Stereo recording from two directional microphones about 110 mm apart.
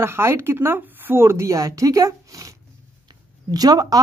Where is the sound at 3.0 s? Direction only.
35° right (ahead or behind).